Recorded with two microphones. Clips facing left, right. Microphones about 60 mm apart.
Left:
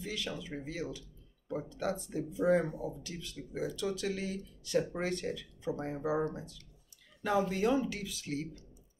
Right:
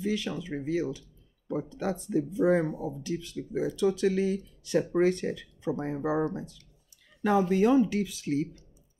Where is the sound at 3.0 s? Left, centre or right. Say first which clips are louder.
Right 10 dB; right.